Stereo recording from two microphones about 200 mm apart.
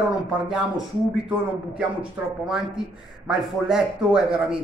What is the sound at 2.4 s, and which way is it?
A man's voice, centre (ahead or behind).